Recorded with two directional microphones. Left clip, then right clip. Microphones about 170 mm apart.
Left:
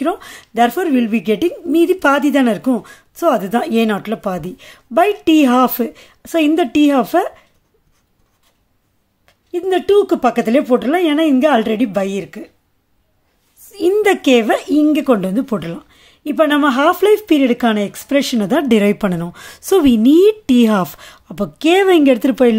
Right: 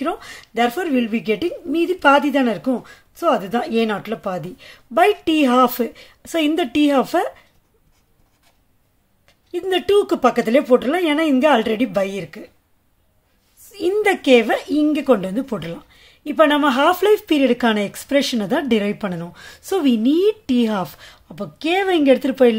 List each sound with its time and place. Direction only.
0.0 s speech: 25° left (ahead or behind)
9.5 s speech: 15° left (ahead or behind)
13.7 s speech: 25° left (ahead or behind)